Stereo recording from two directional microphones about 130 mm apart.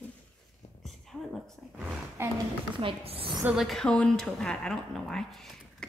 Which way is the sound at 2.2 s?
20° right (ahead or behind).